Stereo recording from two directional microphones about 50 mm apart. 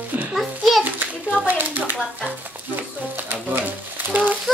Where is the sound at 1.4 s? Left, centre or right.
Right.